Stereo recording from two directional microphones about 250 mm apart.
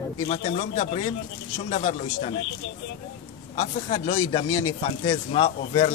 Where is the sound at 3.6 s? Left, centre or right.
Left.